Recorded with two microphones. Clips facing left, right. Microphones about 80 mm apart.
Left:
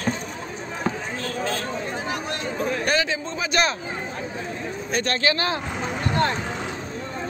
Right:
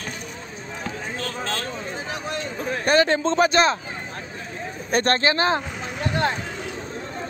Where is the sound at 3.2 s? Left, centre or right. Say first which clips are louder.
Right 10 dB; right.